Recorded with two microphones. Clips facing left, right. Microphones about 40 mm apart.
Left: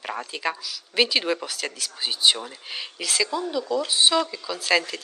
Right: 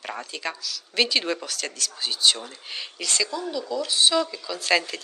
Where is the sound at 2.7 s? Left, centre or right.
Centre.